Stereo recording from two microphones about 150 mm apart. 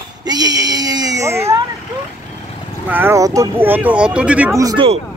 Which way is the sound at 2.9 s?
15° right (ahead or behind).